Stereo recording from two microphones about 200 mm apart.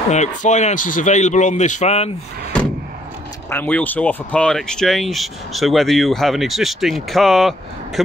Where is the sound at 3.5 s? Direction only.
10° left (ahead or behind).